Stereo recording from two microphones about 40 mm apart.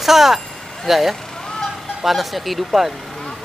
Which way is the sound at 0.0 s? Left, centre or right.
Centre.